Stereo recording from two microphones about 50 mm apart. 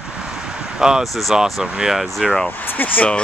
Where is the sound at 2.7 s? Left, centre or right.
Left.